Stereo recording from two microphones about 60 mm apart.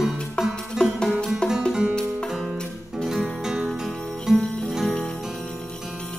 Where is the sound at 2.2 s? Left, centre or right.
Centre.